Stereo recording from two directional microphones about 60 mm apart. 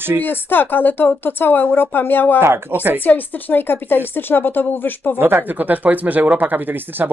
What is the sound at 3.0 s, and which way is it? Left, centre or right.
A woman's voice, left.